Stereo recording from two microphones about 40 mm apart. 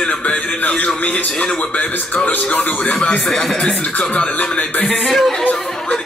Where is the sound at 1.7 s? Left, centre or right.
Left.